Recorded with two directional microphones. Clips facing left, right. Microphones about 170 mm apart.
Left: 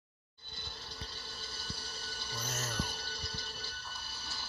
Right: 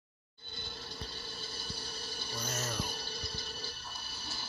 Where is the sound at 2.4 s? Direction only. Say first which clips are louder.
Right 3 dB; centre (ahead or behind).